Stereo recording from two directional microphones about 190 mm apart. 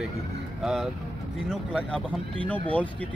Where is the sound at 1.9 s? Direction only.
5° left (ahead or behind).